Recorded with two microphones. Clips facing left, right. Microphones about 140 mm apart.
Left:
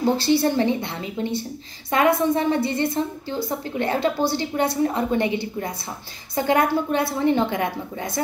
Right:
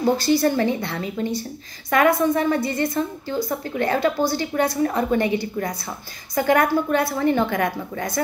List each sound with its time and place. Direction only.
0.2 s a woman's voice: 30° left (ahead or behind)